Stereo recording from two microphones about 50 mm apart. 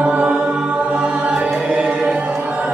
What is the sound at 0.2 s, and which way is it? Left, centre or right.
Music, centre.